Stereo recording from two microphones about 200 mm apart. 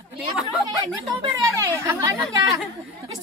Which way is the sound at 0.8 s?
20° right (ahead or behind).